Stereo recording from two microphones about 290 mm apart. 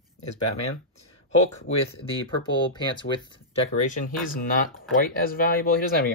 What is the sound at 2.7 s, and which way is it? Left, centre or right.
Speech, centre.